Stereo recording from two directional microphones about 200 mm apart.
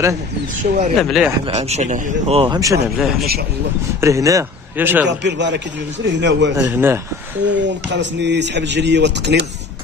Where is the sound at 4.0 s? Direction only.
15° right (ahead or behind).